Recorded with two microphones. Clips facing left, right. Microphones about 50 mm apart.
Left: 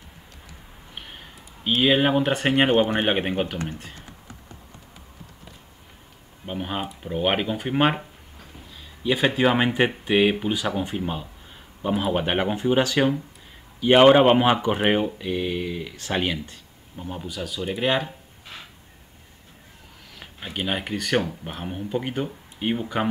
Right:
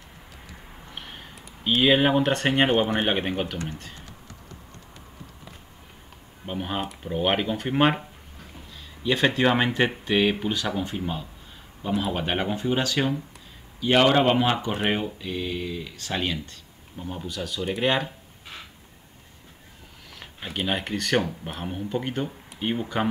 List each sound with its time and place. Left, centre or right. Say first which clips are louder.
0.9 s speech: even; centre
6.4 s speech: even; centre
9.0 s speech: left 1 dB; centre
16.9 s speech: even; centre
20.2 s speech: even; centre